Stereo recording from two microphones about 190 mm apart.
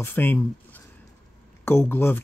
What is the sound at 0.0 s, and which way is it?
Speech, 10° left (ahead or behind).